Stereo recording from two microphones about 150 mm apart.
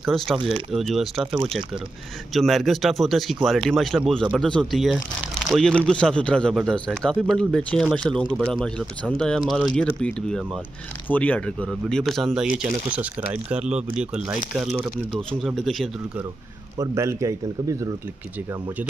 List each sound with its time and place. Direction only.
0.0 s speech: centre (ahead or behind)
2.3 s speech: centre (ahead or behind)
16.7 s speech: 20° right (ahead or behind)